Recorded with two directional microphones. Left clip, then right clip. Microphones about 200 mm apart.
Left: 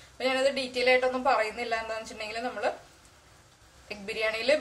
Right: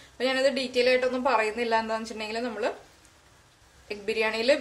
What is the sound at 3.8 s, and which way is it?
Speech, 45° right (ahead or behind).